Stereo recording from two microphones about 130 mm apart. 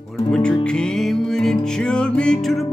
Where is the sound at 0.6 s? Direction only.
5° left (ahead or behind).